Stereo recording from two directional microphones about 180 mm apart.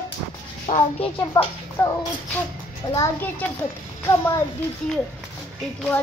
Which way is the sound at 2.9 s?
15° left (ahead or behind).